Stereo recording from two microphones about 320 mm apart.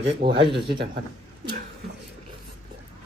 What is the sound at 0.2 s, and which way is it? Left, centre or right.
Speech, centre.